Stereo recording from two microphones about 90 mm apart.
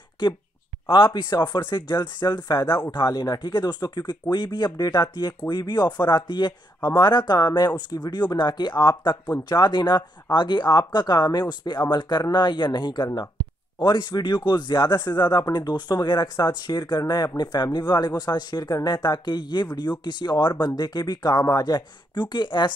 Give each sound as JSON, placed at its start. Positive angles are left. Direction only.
{"t": 0.8, "sound": "speech", "side_deg": 60}